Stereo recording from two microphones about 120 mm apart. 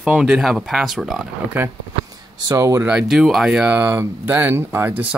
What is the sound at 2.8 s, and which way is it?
Speech, 10° right (ahead or behind).